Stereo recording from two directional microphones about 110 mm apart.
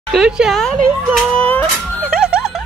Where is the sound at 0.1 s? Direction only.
5° right (ahead or behind).